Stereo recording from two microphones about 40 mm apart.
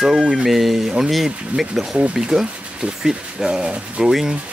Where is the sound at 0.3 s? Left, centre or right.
Centre.